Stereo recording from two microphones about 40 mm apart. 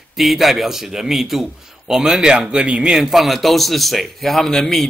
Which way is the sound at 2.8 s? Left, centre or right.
Centre.